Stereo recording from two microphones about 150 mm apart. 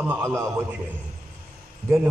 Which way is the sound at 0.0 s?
15° right (ahead or behind).